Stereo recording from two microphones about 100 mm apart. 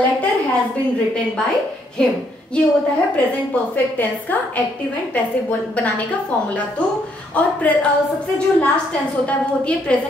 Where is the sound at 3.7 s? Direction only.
15° left (ahead or behind).